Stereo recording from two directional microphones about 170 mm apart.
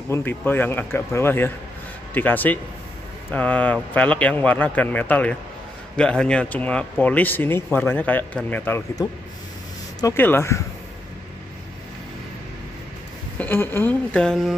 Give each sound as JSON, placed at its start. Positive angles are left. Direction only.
{"t": 0.1, "sound": "speech", "side_deg": 10}
{"t": 13.4, "sound": "speech", "side_deg": 10}